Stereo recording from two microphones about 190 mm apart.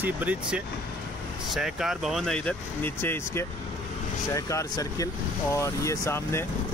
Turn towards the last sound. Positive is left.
turn(degrees=15)  # may be behind; listen again after turning